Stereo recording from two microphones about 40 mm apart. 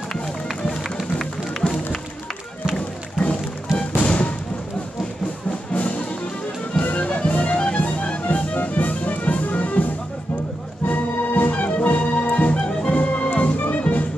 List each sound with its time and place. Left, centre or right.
1.6 s music: left
4.0 s music: left
5.7 s music: left
10.9 s music: left